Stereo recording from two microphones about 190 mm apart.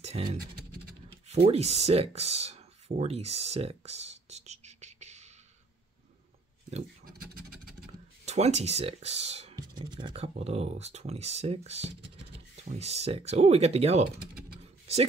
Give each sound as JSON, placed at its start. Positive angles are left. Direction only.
{"t": 0.1, "sound": "speech", "side_deg": -30}
{"t": 1.3, "sound": "speech", "side_deg": -35}
{"t": 8.3, "sound": "speech", "side_deg": -35}
{"t": 9.6, "sound": "speech", "side_deg": -25}